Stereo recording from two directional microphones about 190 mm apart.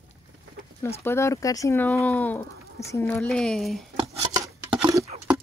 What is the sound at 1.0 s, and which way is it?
Speech, 15° left (ahead or behind).